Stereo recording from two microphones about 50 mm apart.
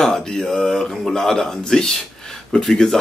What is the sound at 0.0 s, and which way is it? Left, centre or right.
Speech, centre.